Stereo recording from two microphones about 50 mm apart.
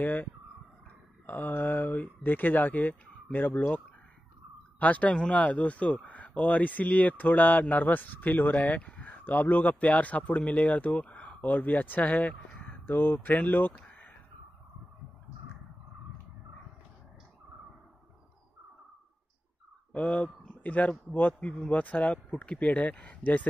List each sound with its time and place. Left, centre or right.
0.0 s a man's voice: left
12.7 s a man's voice: left
19.9 s a man's voice: left
21.4 s speech: left